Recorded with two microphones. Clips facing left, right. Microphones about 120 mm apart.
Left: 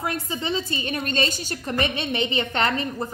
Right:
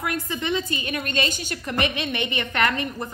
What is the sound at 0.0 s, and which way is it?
A woman's voice, 25° left (ahead or behind).